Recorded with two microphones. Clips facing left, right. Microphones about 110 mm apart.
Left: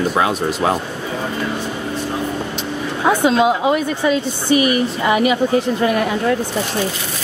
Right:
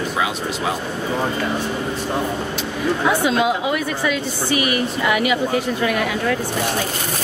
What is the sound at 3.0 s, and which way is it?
Speech, 30° left (ahead or behind).